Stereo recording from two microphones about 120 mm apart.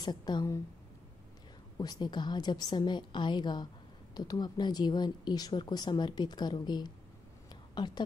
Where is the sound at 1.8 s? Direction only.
35° left (ahead or behind).